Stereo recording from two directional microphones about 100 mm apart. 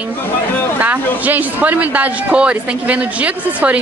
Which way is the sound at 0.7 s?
15° right (ahead or behind).